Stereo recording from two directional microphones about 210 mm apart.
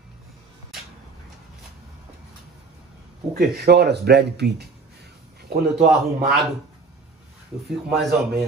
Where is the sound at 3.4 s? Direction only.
50° right (ahead or behind).